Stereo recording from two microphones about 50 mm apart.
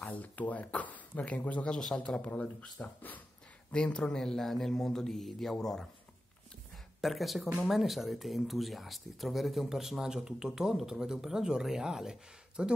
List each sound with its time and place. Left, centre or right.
0.0 s a sound: left
0.7 s speech: left
1.6 s speech: centre
3.7 s speech: centre
7.0 s speech: centre